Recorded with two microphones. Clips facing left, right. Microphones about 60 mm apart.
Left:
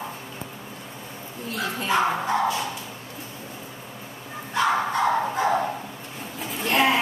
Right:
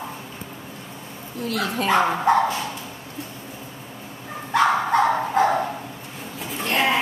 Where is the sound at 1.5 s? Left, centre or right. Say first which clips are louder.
Right 4 dB; right.